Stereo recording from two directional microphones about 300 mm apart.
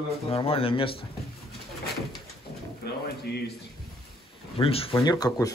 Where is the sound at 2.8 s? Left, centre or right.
Left.